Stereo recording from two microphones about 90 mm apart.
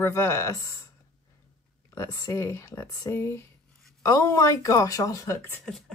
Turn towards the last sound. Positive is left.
turn(degrees=5)  # may be behind; listen again after turning